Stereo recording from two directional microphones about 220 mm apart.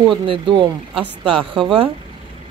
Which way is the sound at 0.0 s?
20° right (ahead or behind).